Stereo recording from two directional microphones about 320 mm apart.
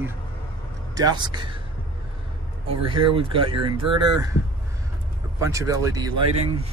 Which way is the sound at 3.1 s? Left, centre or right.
Centre.